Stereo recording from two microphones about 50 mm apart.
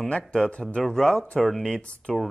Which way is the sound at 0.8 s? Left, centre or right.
Centre.